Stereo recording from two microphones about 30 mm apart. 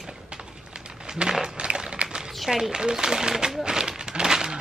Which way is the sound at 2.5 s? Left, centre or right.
Right.